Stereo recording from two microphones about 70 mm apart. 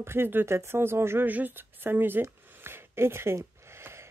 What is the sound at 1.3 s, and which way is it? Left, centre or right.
Speech, right.